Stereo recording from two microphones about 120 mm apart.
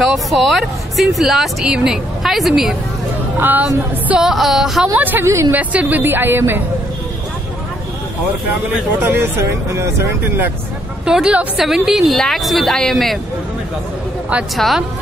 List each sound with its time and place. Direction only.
0.1 s speech: centre (ahead or behind)
3.3 s speech: 15° right (ahead or behind)
3.6 s speech: 5° right (ahead or behind)
4.9 s a woman's voice: 15° right (ahead or behind)
5.6 s a woman's voice: 10° right (ahead or behind)
9.0 s speech: 20° right (ahead or behind)
11.1 s speech: 5° right (ahead or behind)
14.6 s speech: centre (ahead or behind)